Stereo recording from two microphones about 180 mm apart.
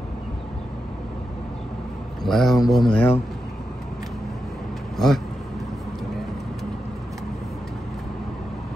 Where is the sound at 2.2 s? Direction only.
Centre (ahead or behind).